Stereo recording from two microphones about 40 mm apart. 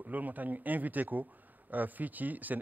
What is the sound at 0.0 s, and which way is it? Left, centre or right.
Speech, right.